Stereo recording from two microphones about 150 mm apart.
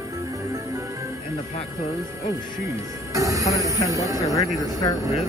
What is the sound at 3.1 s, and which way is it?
Speech, 20° right (ahead or behind).